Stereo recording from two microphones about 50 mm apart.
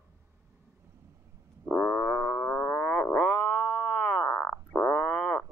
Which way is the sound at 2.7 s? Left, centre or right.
Left.